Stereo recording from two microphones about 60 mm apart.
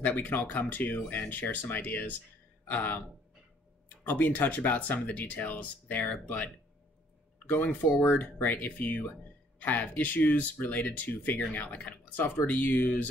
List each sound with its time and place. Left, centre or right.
0.0 s speech: left
4.1 s speech: left